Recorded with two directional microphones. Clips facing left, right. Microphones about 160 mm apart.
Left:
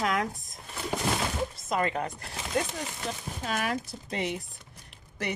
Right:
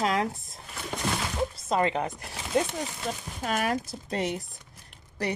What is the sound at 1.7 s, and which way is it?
Speech, 25° right (ahead or behind).